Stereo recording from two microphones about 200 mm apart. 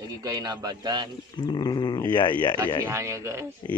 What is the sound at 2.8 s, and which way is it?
Speech, 15° right (ahead or behind).